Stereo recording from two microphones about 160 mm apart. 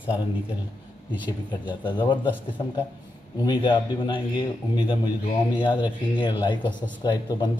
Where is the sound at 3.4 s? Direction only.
25° left (ahead or behind).